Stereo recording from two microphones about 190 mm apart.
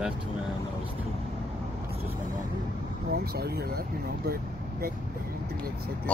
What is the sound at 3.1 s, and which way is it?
Speech, 55° right (ahead or behind).